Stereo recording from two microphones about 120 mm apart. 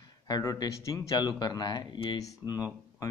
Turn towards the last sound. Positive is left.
turn(degrees=30)  # may be behind; listen again after turning